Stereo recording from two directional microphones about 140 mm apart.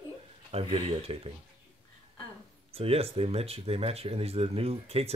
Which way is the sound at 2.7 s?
45° right (ahead or behind).